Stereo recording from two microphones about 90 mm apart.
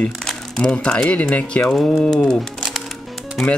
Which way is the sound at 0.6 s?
10° left (ahead or behind).